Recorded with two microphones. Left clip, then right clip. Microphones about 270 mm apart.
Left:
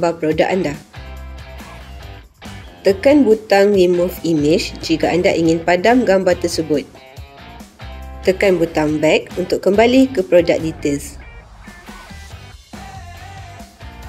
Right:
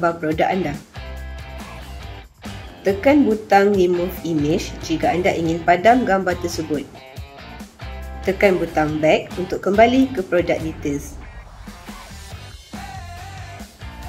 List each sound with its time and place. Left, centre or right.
0.0 s speech: left
2.8 s speech: left
8.2 s speech: left